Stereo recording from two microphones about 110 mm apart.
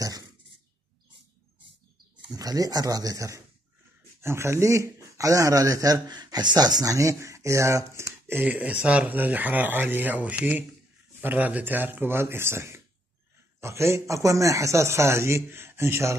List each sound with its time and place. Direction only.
2.3 s speech: 35° right (ahead or behind)